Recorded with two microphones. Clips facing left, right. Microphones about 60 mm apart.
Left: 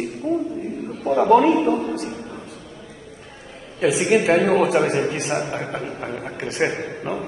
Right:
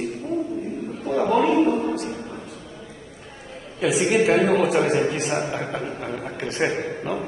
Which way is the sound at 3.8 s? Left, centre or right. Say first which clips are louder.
Left 2 dB; left.